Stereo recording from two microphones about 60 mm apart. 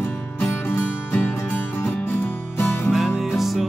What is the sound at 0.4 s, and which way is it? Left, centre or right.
Music, left.